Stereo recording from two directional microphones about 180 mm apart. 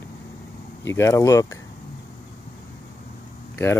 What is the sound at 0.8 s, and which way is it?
Speech, 15° left (ahead or behind).